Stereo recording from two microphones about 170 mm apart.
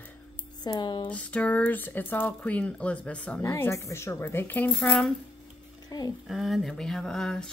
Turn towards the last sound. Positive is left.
turn(degrees=5)  # may be behind; listen again after turning